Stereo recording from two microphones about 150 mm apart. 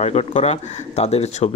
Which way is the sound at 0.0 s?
45° left (ahead or behind).